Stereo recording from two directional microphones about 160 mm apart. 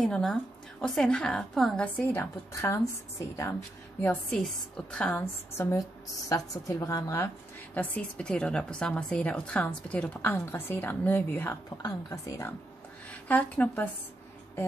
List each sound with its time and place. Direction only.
0.0 s a woman's voice: 5° left (ahead or behind); by 3.5 s 20° left (ahead or behind)
4.0 s a woman's voice: 10° left (ahead or behind)
5.6 s a woman's voice: 20° left (ahead or behind)
7.7 s a woman's voice: 10° left (ahead or behind)